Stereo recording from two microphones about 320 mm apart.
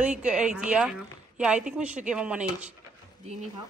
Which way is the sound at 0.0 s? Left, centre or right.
Centre.